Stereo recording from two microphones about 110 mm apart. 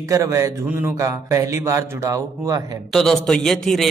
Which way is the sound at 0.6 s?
15° right (ahead or behind).